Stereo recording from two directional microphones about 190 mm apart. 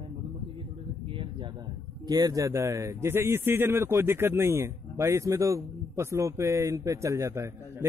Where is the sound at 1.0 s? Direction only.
25° right (ahead or behind).